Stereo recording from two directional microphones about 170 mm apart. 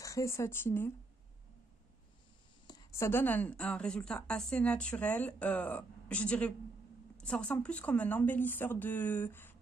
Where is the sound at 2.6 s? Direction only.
20° left (ahead or behind).